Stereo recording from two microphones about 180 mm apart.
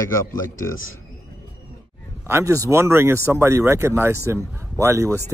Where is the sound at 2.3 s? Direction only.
15° right (ahead or behind).